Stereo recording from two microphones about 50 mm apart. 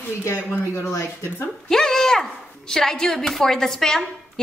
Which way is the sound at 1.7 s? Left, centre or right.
Centre.